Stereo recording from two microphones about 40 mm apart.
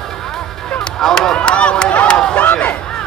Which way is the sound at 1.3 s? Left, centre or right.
Left.